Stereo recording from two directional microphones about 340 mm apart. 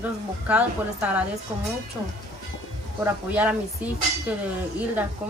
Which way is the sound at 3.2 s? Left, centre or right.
Centre.